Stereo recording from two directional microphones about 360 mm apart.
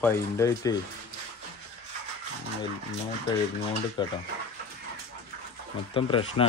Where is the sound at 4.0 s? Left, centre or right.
Centre.